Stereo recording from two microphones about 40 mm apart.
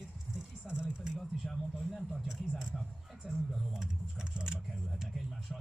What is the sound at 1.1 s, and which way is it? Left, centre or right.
Speech, centre.